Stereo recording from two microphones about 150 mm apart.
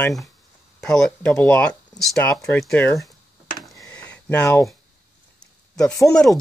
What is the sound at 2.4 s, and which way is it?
Speech, 5° left (ahead or behind).